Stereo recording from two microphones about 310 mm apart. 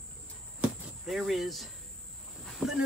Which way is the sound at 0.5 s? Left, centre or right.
Centre.